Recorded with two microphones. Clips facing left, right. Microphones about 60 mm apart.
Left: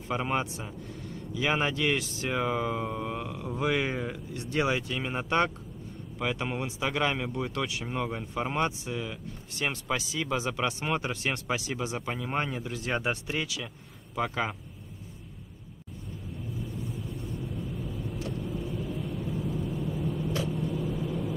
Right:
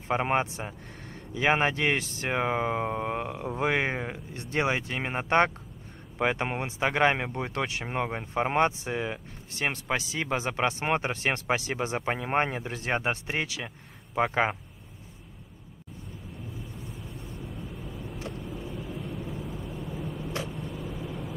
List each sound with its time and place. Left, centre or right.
0.1 s speech: right
17.3 s vehicle: centre